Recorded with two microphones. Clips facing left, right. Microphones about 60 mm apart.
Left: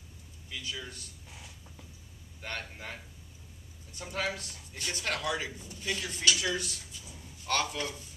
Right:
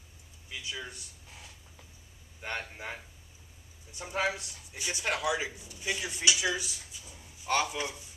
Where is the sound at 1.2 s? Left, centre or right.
Centre.